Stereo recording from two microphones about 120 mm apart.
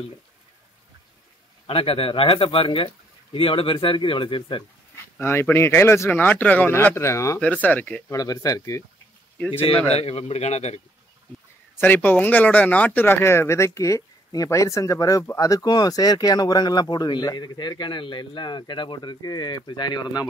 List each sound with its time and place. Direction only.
1.7 s speech: 50° left (ahead or behind)
5.2 s speech: 20° left (ahead or behind)
7.3 s speech: 10° left (ahead or behind)
8.1 s speech: 30° left (ahead or behind)
9.5 s a man's voice: 55° left (ahead or behind)
11.8 s speech: 15° left (ahead or behind); by 20.2 s 35° left (ahead or behind)